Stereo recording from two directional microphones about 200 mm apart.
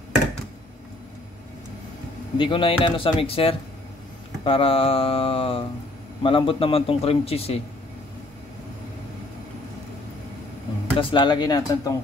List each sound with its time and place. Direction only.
2.3 s a man's voice: 25° left (ahead or behind)
11.0 s a man's voice: 25° left (ahead or behind)